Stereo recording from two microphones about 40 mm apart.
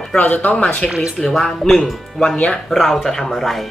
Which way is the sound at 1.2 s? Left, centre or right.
Centre.